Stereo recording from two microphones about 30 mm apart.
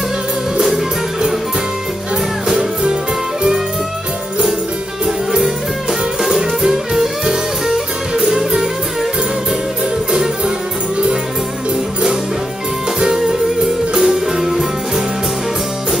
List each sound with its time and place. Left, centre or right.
5.0 s music: centre
6.6 s music: right
8.4 s music: right
13.9 s music: centre